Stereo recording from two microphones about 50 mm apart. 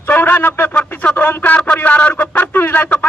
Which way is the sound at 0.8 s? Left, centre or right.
Left.